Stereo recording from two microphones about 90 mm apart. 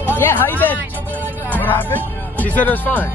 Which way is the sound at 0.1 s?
25° left (ahead or behind).